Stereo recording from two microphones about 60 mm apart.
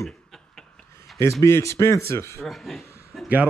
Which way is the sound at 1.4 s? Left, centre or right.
Left.